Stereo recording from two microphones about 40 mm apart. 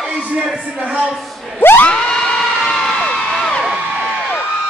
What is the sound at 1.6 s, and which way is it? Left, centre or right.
Crowd, left.